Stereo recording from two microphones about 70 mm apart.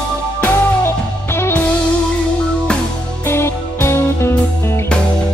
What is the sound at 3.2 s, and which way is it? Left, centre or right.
Music, left.